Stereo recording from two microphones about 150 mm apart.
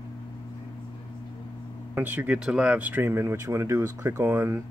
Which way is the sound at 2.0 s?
10° right (ahead or behind).